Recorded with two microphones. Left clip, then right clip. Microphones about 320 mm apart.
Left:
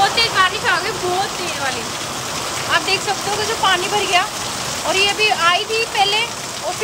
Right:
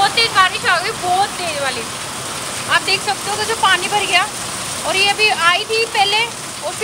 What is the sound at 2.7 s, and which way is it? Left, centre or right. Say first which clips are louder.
Speech: right 2 dB; centre.